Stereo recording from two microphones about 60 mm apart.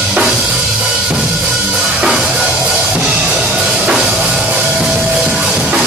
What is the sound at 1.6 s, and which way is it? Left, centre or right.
Music, centre.